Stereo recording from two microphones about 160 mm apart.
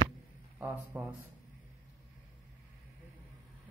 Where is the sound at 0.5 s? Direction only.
10° right (ahead or behind).